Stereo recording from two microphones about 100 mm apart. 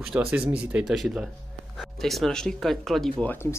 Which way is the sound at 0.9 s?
Centre (ahead or behind).